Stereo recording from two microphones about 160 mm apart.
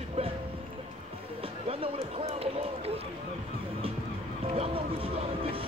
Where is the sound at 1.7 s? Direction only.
35° right (ahead or behind).